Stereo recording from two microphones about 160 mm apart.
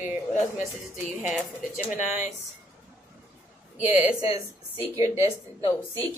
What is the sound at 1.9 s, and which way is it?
Speech, 55° left (ahead or behind).